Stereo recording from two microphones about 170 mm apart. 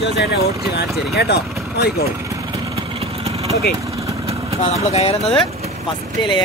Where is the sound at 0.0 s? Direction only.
80° left.